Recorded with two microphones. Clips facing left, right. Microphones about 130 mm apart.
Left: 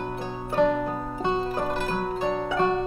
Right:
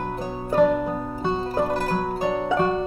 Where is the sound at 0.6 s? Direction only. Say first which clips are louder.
Right 3 dB; 5° right (ahead or behind).